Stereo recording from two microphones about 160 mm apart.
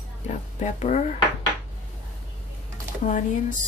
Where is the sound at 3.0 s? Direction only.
50° left (ahead or behind).